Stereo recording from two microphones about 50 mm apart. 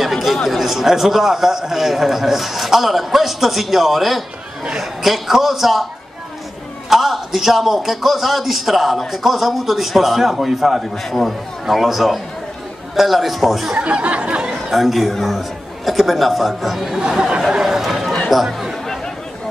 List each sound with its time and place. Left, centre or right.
0.0 s a man's voice: centre
6.9 s a man's voice: centre
13.7 s speech: right
14.5 s a man's voice: centre